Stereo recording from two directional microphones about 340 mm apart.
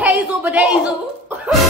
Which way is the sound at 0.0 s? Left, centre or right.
Centre.